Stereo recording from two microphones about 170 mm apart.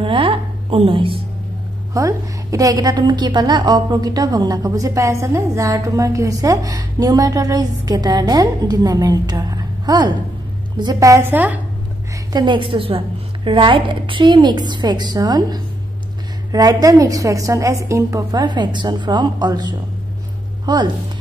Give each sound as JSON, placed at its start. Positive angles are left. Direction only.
{"t": 0.0, "sound": "a sound", "side_deg": -30}
{"t": 2.0, "sound": "a woman's voice", "side_deg": -20}
{"t": 12.3, "sound": "a woman's voice", "side_deg": -25}